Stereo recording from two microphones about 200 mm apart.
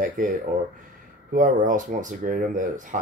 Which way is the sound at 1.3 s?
40° right (ahead or behind).